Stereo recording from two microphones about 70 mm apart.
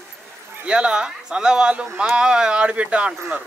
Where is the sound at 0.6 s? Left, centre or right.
Centre.